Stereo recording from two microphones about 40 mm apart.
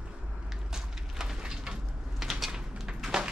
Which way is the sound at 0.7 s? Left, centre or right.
Centre.